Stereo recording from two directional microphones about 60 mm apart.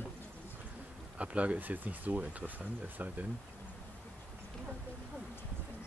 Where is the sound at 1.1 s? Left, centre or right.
Right.